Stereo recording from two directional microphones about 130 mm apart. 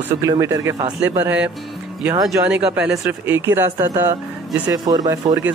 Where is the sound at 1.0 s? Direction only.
15° right (ahead or behind).